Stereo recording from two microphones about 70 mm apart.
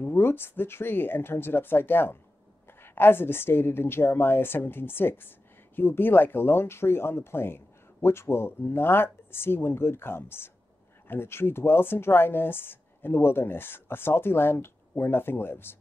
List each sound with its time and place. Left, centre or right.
0.0 s speech: left